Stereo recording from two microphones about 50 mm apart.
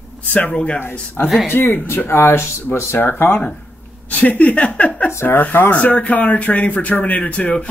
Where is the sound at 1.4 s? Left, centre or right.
Left.